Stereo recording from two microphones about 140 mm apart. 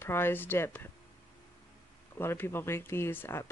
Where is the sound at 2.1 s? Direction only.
15° left (ahead or behind).